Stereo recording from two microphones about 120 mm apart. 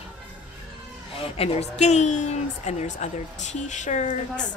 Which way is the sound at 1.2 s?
55° left (ahead or behind).